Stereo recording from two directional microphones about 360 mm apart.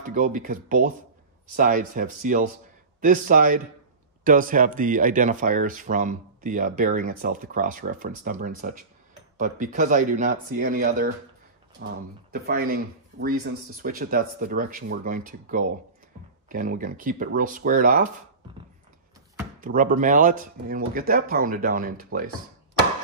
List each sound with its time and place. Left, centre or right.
0.0 s speech: right
19.6 s speech: right